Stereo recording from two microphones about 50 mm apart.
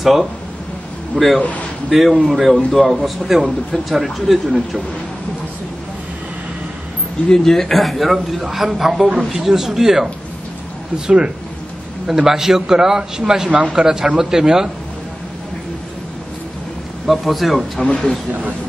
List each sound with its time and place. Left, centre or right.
0.0 s a man's voice: centre
7.2 s a man's voice: centre
11.1 s a man's voice: centre
17.0 s a man's voice: centre
17.8 s speech: left